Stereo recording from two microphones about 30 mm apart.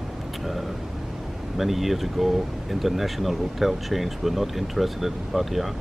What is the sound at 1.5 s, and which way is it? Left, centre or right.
A man's voice, centre.